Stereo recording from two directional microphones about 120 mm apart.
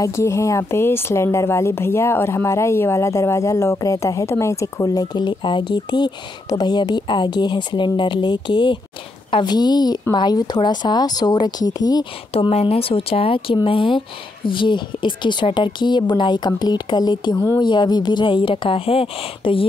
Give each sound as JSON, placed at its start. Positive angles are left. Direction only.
{"t": 0.0, "sound": "a woman's voice", "side_deg": 25}
{"t": 12.3, "sound": "a woman's voice", "side_deg": 55}